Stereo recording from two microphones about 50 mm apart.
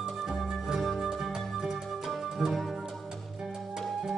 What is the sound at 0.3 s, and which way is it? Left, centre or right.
Music, centre.